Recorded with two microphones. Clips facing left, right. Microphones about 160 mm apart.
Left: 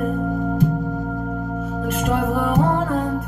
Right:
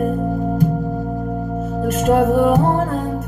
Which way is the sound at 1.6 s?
45° right (ahead or behind).